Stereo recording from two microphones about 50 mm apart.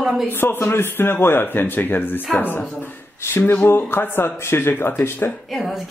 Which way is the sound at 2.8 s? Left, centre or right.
Left.